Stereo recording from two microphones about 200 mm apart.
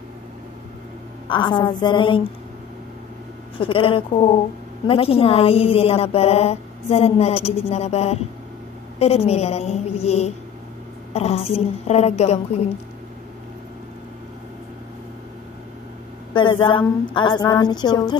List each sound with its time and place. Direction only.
1.3 s a woman's voice: 25° left (ahead or behind)
3.5 s a woman's voice: 25° left (ahead or behind)
16.3 s a woman's voice: 25° left (ahead or behind)